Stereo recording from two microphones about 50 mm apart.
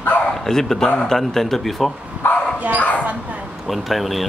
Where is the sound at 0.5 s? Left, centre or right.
Centre.